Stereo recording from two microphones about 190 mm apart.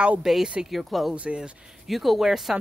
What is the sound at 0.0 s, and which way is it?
A man's voice, 5° right (ahead or behind).